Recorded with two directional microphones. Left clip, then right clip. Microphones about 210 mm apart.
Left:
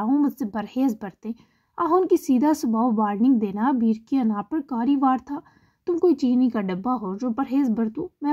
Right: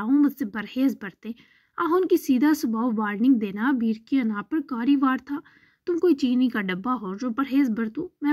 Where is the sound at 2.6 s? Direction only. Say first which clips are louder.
Left 4 dB; 25° right (ahead or behind).